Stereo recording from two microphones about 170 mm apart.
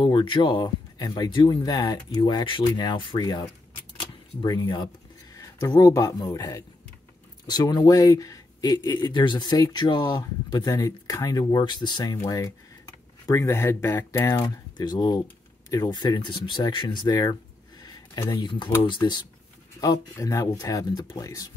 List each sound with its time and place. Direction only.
0.0 s speech: 30° left (ahead or behind)
4.0 s a sound: 25° left (ahead or behind)
5.3 s speech: 20° left (ahead or behind)